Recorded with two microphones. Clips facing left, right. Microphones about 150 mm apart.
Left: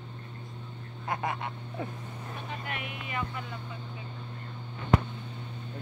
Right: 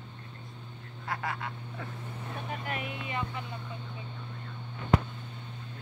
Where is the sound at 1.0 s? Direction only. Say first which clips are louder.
Left 3 dB; 20° left (ahead or behind).